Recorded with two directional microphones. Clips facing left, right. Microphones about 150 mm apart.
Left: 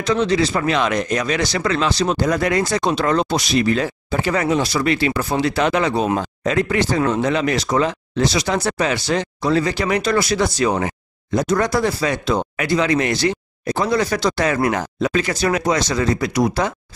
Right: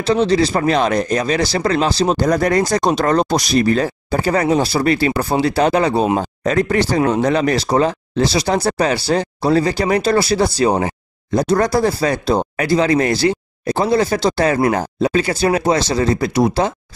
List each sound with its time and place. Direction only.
0.0 s speech: 30° right (ahead or behind)